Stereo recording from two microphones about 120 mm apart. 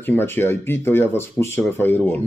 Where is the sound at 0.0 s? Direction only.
20° left (ahead or behind).